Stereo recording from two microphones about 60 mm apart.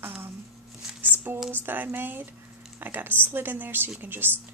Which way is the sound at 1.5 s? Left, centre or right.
Right.